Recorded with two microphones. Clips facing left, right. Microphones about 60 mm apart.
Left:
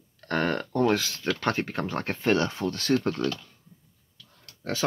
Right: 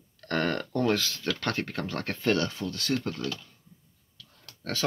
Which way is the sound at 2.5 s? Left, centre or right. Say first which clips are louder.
Left 5 dB; left.